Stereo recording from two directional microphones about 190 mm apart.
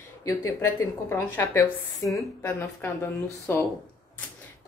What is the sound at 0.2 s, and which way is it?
A woman's voice, 15° left (ahead or behind).